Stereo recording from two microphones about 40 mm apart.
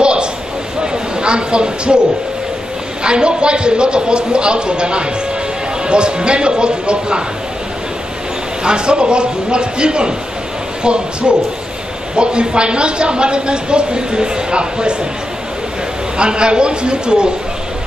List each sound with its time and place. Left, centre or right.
0.0 s a sound: right
1.2 s speech: right
3.0 s speech: right
8.6 s speech: right
16.2 s speech: right